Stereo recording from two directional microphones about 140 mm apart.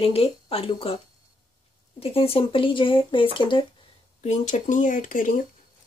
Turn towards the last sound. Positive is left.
turn(degrees=70)  # may be behind; listen again after turning